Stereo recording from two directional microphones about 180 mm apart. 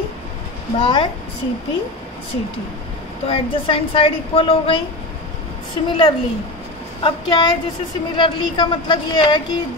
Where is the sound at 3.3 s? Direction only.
30° left (ahead or behind).